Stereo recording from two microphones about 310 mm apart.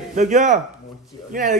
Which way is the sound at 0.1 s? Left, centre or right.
Right.